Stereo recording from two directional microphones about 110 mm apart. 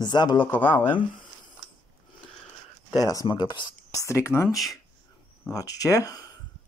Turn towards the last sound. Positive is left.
turn(degrees=35)  # may be behind; listen again after turning